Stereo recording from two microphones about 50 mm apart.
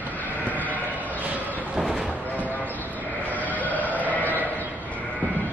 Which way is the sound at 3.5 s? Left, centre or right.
Left.